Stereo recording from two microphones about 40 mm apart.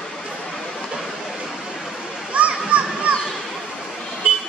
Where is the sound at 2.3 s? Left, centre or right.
Right.